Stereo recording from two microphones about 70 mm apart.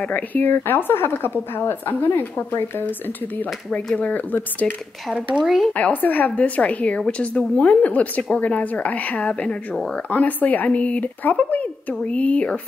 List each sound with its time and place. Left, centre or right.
0.0 s speech: left
3.3 s speech: centre
5.4 s speech: centre
5.7 s a woman's voice: left